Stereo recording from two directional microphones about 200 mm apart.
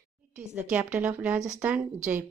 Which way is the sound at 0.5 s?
5° right (ahead or behind).